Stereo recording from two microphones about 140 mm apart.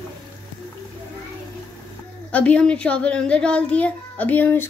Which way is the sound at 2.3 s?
10° left (ahead or behind).